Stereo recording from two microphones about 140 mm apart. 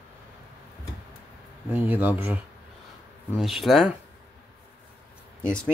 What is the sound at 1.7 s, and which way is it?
Speech, 10° right (ahead or behind).